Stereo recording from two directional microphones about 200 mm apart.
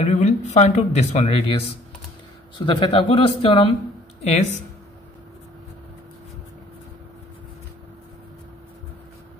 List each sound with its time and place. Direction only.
0.0 s speech: 35° left (ahead or behind)